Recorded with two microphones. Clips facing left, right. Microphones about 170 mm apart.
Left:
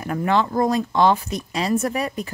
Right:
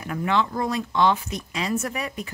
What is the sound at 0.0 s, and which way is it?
Speech, 45° left (ahead or behind).